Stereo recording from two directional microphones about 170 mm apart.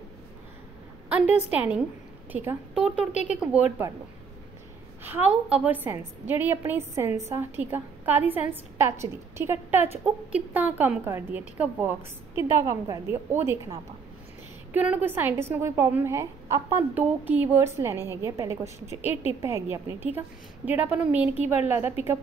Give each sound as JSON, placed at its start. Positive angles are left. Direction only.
{"t": 1.0, "sound": "a sound", "side_deg": -10}
{"t": 1.5, "sound": "a woman's voice", "side_deg": -10}
{"t": 5.0, "sound": "a woman's voice", "side_deg": -10}